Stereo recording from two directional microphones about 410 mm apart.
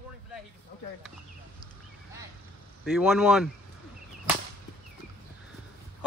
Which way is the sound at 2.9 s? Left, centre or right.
Centre.